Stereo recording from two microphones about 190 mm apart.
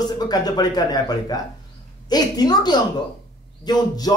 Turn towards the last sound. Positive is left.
turn(degrees=20)  # may be behind; listen again after turning